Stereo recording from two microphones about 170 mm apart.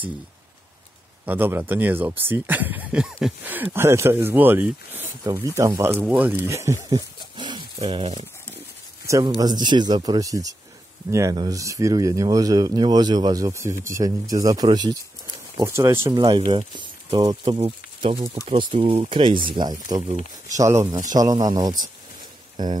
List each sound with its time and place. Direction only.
1.2 s speech: 10° right (ahead or behind); by 8.3 s 35° right (ahead or behind)
9.0 s speech: 20° right (ahead or behind)